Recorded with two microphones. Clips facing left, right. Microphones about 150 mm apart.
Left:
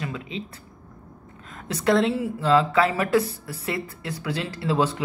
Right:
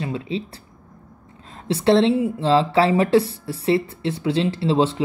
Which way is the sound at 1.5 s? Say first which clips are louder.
Right 5 dB; 30° right (ahead or behind).